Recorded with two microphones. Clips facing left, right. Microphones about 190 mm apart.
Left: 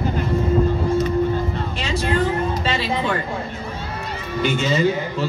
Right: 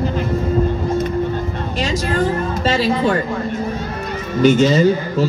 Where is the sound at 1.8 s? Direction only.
40° right (ahead or behind).